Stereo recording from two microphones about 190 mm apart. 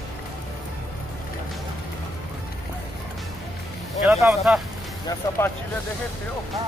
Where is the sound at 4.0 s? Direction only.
Centre (ahead or behind).